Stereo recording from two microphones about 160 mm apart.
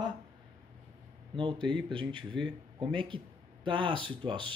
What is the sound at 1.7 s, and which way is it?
Speech, 30° right (ahead or behind).